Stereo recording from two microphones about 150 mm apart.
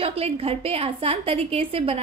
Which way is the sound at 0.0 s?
40° right (ahead or behind).